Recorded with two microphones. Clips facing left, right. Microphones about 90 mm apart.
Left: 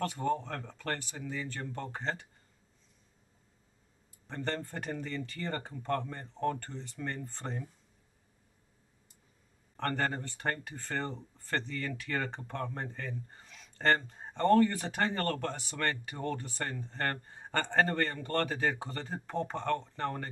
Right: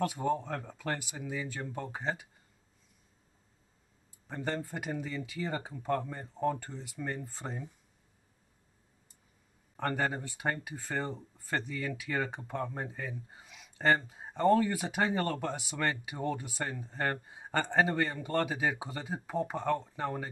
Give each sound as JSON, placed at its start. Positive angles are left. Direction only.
{"t": 0.0, "sound": "speech", "side_deg": -10}
{"t": 4.3, "sound": "speech", "side_deg": -10}
{"t": 9.8, "sound": "speech", "side_deg": -10}